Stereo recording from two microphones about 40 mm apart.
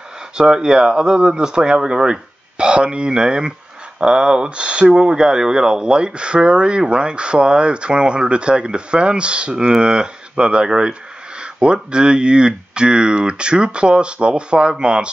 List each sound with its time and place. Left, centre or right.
0.4 s speech: centre